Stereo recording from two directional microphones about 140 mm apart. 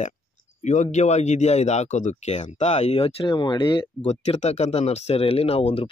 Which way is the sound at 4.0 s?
50° left (ahead or behind).